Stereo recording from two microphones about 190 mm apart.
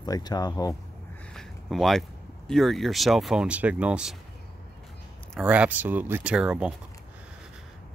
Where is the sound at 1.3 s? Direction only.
Centre (ahead or behind).